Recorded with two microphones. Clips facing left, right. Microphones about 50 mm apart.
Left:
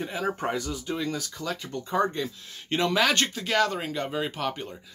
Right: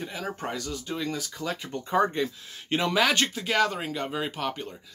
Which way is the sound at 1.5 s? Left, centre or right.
Centre.